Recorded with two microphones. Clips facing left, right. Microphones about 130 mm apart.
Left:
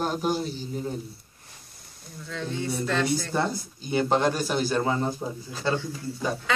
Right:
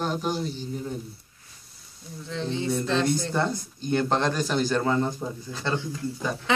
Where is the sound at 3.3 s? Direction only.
10° left (ahead or behind).